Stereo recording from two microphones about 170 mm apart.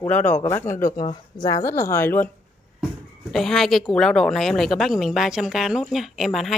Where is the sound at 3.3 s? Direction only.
Centre (ahead or behind).